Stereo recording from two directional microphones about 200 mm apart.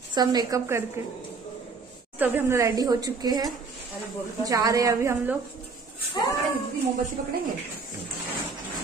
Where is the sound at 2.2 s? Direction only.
10° right (ahead or behind).